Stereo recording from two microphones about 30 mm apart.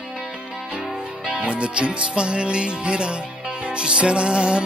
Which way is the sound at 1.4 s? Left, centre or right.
Right.